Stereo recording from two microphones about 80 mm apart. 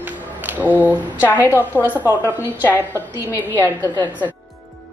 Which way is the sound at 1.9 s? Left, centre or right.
Right.